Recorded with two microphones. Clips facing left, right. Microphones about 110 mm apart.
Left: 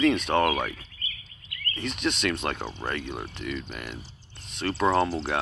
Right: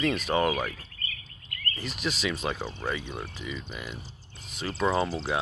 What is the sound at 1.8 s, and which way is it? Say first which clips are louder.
Speech: left 4 dB; 5° right (ahead or behind).